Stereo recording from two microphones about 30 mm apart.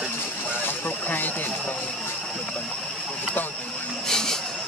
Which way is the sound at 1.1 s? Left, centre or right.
Left.